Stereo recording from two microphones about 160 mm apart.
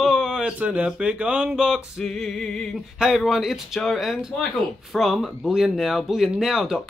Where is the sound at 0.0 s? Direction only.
5° right (ahead or behind).